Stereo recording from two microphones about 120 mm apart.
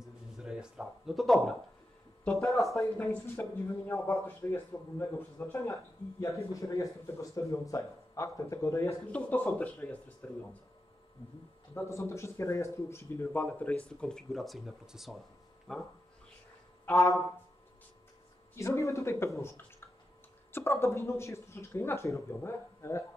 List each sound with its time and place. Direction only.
0.0 s a sound: 5° right (ahead or behind)
2.5 s speech: centre (ahead or behind)
2.8 s speech: 20° left (ahead or behind)
11.7 s speech: 25° left (ahead or behind)
18.5 s speech: 25° left (ahead or behind)